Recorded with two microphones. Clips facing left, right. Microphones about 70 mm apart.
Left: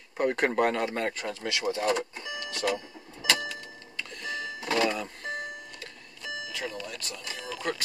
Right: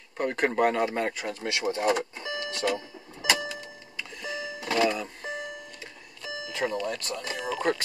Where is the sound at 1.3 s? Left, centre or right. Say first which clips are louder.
Right 1 dB; right.